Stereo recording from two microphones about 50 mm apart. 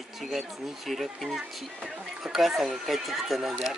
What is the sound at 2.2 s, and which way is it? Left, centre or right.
Speech, centre.